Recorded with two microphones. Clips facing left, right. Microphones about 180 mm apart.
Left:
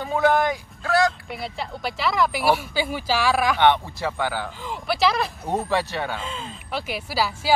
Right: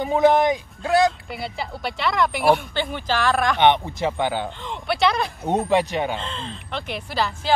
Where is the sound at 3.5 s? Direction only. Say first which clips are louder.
Right 1 dB; 20° right (ahead or behind).